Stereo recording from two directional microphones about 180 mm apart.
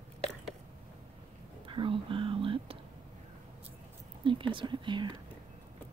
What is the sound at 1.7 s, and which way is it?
Speech, 30° right (ahead or behind).